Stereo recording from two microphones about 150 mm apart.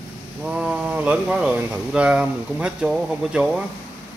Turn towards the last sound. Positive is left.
turn(degrees=-5)  # may be behind; listen again after turning